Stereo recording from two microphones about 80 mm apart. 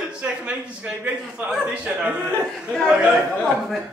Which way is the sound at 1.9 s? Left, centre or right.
Right.